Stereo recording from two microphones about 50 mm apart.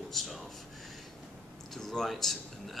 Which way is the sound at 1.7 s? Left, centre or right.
Centre.